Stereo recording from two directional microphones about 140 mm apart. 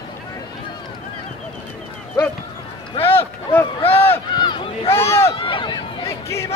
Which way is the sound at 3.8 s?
45° left (ahead or behind).